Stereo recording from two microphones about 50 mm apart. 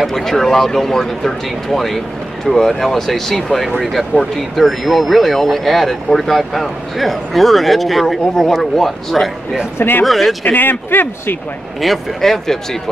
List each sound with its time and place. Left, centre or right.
0.0 s speech: centre
9.8 s a man's voice: left
10.0 s speech: centre
10.4 s a man's voice: left
11.8 s speech: centre